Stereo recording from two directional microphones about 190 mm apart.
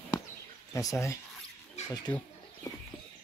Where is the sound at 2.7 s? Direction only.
20° left (ahead or behind).